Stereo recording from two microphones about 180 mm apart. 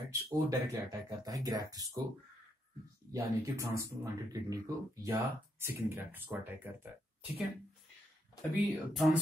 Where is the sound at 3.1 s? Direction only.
15° right (ahead or behind).